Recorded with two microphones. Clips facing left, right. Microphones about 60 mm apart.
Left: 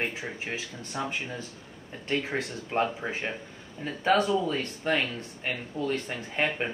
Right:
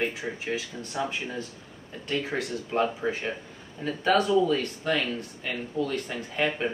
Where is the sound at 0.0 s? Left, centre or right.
Left.